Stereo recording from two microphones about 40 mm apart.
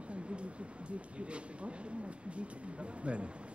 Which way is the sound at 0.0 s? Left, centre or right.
Right.